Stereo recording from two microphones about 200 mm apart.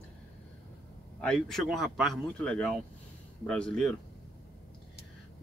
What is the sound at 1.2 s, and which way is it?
Speech, 5° left (ahead or behind).